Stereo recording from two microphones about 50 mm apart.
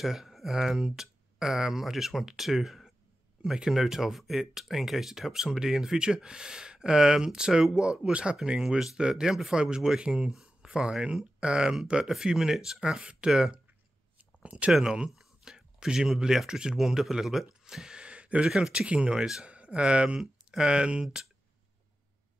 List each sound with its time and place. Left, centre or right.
0.0 s speech: centre
13.0 s speech: right
13.3 s speech: centre
14.1 s a sound: right
14.7 s speech: centre
15.0 s a sound: centre
16.1 s speech: centre
17.6 s a sound: centre
18.5 s speech: centre